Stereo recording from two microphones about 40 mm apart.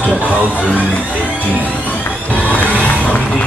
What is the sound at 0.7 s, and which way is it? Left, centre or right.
Speech, left.